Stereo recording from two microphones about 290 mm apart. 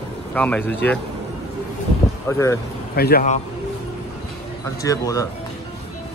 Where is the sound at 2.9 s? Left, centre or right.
Left.